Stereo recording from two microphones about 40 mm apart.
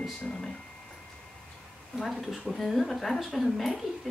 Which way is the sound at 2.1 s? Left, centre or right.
Centre.